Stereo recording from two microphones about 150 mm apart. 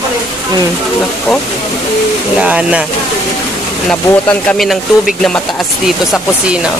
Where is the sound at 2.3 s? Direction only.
10° right (ahead or behind).